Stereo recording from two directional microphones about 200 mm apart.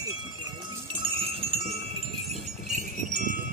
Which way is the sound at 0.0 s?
20° right (ahead or behind).